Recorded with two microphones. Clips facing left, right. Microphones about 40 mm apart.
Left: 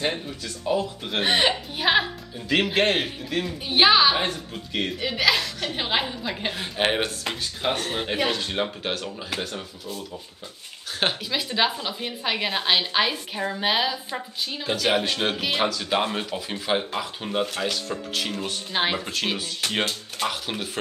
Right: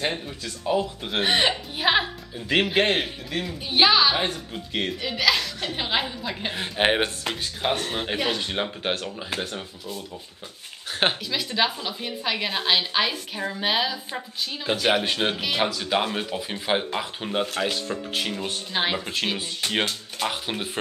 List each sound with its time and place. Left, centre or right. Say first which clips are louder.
0.0 s a woman's voice: left 1 dB; centre
4.1 s a woman's voice: even; centre
4.9 s a woman's voice: left 1 dB; centre
6.5 s speech: right 3 dB; centre
7.8 s a woman's voice: even; centre
8.4 s speech: left 1 dB; centre
11.2 s a woman's voice: left 1 dB; centre
14.7 s a woman's voice: right 1 dB; centre
18.7 s a woman's voice: left 1 dB; centre
19.6 s speech: right 1 dB; centre